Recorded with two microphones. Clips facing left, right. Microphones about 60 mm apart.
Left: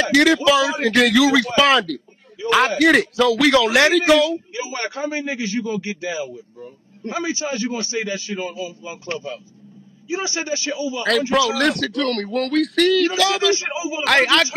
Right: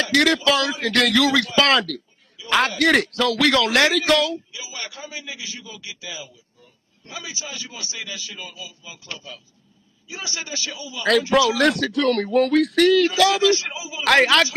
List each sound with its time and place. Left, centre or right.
0.0 s a man's voice: centre
2.4 s a sound: left
2.8 s a man's voice: centre
4.6 s a man's voice: left
11.3 s a man's voice: centre
13.5 s speech: left
14.0 s a man's voice: centre